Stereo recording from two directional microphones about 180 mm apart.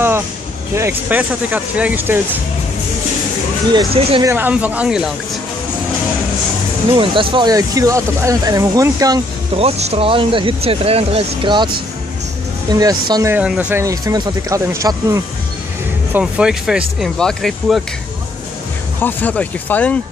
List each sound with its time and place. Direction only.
0.7 s speech: 10° right (ahead or behind)
3.7 s speech: 30° right (ahead or behind)
4.2 s speech: 15° right (ahead or behind)
6.9 s speech: 30° right (ahead or behind)
9.6 s speech: 35° right (ahead or behind); by 15.2 s 20° right (ahead or behind)
16.1 s speech: 5° right (ahead or behind)
18.9 s speech: 10° left (ahead or behind)